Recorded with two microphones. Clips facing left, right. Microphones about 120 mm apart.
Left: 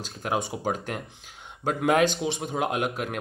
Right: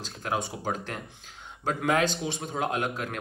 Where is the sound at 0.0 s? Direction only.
20° left (ahead or behind).